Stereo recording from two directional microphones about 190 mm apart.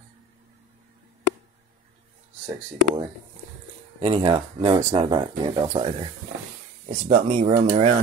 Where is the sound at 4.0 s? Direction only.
30° right (ahead or behind).